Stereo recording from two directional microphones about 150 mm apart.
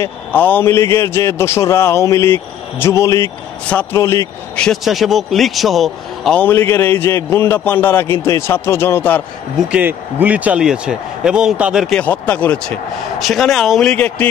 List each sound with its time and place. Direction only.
0.0 s a man's voice: 10° left (ahead or behind)
4.6 s a man's voice: centre (ahead or behind)
6.4 s a man's voice: 15° left (ahead or behind)
9.6 s speech: 10° right (ahead or behind)
12.0 s a man's voice: 10° left (ahead or behind)